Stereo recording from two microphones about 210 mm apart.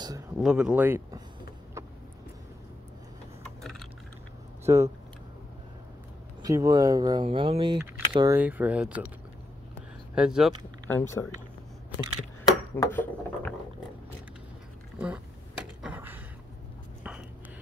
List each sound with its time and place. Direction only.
0.4 s speech: 5° right (ahead or behind)
3.4 s a sound: centre (ahead or behind)
4.6 s speech: 15° right (ahead or behind)
6.4 s speech: 15° right (ahead or behind)
8.4 s speech: 5° right (ahead or behind)
10.1 s speech: 5° right (ahead or behind)
10.9 s speech: 10° left (ahead or behind)
12.4 s speech: 10° left (ahead or behind)
15.0 s speech: 5° right (ahead or behind)
15.8 s a sound: 10° right (ahead or behind)